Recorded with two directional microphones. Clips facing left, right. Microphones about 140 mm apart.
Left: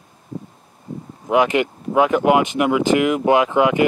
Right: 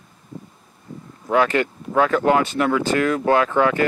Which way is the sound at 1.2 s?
15° left (ahead or behind).